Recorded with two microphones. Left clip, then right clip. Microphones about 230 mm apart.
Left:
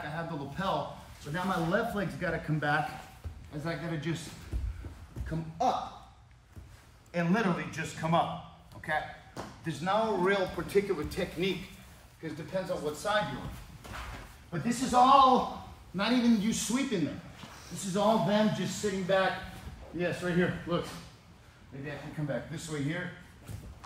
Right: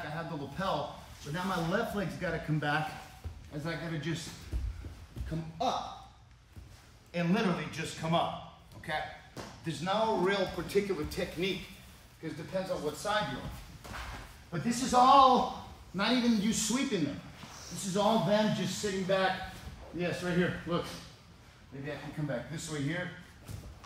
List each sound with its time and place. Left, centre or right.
0.0 s a man's voice: centre
5.6 s speech: centre
7.1 s speech: centre
13.8 s a sound: centre
16.0 s speech: centre
21.8 s speech: centre